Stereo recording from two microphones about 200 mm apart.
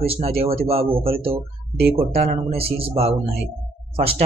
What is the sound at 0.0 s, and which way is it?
Speech, 30° right (ahead or behind).